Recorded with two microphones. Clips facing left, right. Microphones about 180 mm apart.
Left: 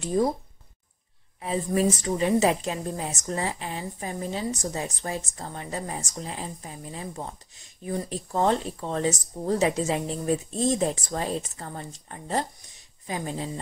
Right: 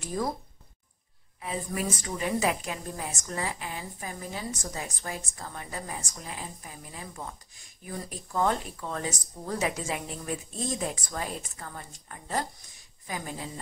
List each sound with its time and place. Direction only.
0.0 s speech: 25° left (ahead or behind)
1.4 s speech: 30° left (ahead or behind)